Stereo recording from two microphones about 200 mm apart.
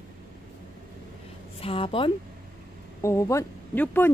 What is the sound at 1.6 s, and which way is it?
Speech, 25° left (ahead or behind).